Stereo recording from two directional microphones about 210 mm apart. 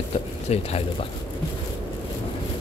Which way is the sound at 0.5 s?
30° left (ahead or behind).